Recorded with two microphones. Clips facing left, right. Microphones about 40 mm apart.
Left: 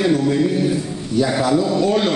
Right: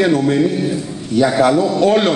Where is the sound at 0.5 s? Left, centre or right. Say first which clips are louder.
Even; centre.